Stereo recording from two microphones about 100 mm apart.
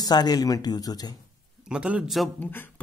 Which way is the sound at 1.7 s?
10° right (ahead or behind).